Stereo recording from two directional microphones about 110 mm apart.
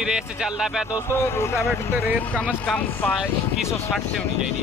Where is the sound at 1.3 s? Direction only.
25° left (ahead or behind).